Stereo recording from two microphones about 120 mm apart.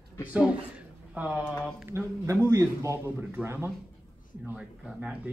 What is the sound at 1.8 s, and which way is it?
A man's voice, 20° right (ahead or behind).